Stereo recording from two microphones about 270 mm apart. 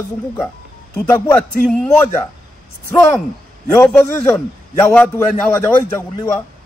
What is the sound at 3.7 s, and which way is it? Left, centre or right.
A man's voice, centre.